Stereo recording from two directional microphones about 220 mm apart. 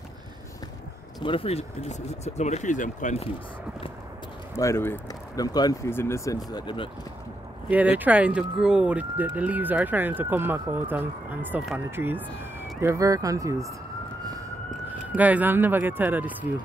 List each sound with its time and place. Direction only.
1.2 s speech: 25° left (ahead or behind)
4.6 s speech: 10° left (ahead or behind)
7.7 s speech: 5° right (ahead or behind)
15.1 s speech: 5° right (ahead or behind)